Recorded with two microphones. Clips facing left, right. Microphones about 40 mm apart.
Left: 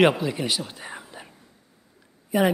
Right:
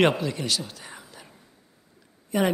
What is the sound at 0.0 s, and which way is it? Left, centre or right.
Speech, centre.